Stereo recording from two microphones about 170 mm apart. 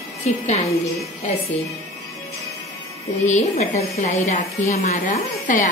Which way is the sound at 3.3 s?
45° left (ahead or behind).